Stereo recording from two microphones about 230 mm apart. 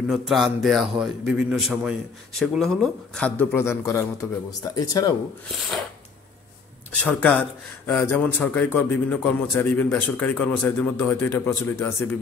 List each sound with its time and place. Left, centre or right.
0.1 s a man's voice: centre
5.5 s a man's voice: centre
7.0 s speech: centre